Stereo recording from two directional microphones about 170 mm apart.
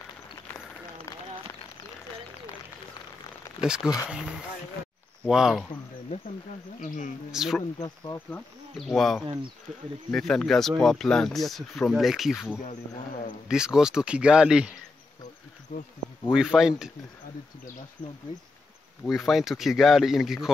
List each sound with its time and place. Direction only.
3.6 s speech: 5° right (ahead or behind)
5.3 s speech: 5° right (ahead or behind)
7.2 s speech: centre (ahead or behind)
7.8 s speech: 20° left (ahead or behind)
8.3 s speech: centre (ahead or behind)
12.6 s speech: 45° left (ahead or behind)
13.5 s speech: 5° right (ahead or behind)
16.3 s speech: 5° right (ahead or behind)
18.0 s speech: 30° left (ahead or behind)
19.0 s speech: centre (ahead or behind)